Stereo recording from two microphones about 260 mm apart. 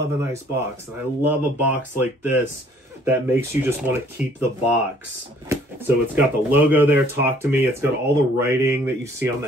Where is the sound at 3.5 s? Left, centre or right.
Centre.